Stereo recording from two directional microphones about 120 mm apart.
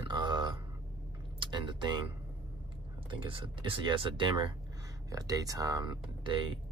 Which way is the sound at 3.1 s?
45° right (ahead or behind).